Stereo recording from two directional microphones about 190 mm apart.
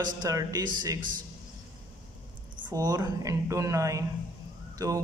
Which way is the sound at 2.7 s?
20° right (ahead or behind).